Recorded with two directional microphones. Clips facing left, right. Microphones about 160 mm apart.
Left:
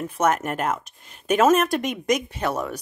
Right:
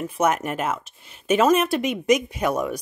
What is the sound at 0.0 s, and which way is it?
Speech, 5° right (ahead or behind).